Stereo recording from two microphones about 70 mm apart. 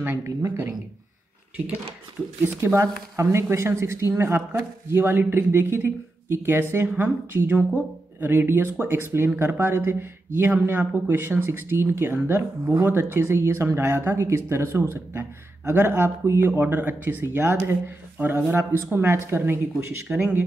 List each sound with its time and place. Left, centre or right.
0.0 s speech: right
2.4 s speech: right
20.1 s speech: centre